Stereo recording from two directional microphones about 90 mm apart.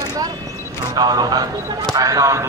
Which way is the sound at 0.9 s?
50° right (ahead or behind).